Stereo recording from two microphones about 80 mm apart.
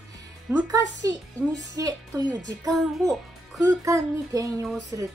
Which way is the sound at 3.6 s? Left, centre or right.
Right.